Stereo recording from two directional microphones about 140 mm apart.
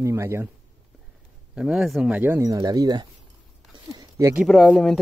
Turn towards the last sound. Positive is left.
turn(degrees=5)  # may be behind; listen again after turning